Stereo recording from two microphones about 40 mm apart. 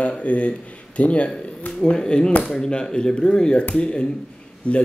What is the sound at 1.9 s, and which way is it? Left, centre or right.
Speech, left.